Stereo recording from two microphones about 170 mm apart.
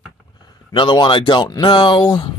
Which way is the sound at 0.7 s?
30° left (ahead or behind).